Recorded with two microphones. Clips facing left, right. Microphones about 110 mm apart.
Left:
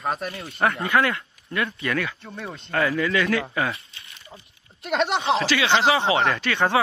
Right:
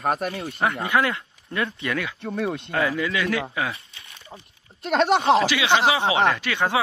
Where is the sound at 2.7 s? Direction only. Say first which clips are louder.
Left 5 dB; 10° right (ahead or behind).